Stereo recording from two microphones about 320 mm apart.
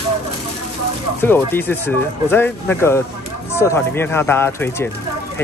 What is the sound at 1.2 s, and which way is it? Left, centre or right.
Speech, centre.